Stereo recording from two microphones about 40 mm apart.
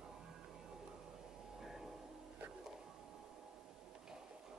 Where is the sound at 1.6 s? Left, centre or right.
Centre.